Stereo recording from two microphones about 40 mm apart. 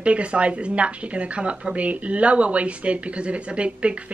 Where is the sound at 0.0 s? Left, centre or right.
Right.